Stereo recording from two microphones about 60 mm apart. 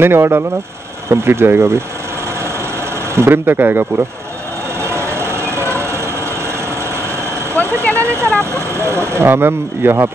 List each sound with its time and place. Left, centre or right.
0.0 s speech: right
3.2 s speech: right
4.8 s vehicle: right
8.0 s speech: right